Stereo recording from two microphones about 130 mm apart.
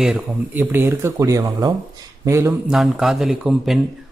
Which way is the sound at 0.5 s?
20° right (ahead or behind).